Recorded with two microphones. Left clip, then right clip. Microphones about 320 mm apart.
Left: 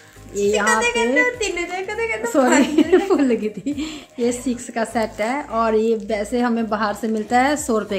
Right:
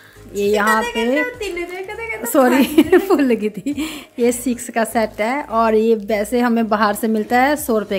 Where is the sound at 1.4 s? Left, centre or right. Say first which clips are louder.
Left 2 dB; centre.